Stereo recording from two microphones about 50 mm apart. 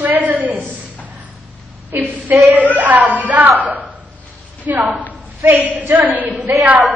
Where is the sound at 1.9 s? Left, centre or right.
Right.